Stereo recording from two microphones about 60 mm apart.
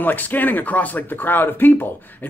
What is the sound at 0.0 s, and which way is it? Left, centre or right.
Speech, left.